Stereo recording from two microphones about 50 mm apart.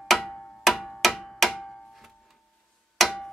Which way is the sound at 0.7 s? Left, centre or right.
Centre.